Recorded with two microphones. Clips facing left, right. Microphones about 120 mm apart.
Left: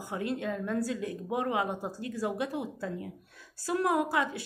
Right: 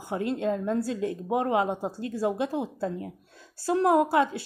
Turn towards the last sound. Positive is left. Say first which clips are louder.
# right 6 dB
turn(degrees=-30)  # may be behind; listen again after turning